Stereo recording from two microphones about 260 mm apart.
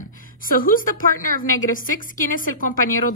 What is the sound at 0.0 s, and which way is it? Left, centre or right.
A woman's voice, left.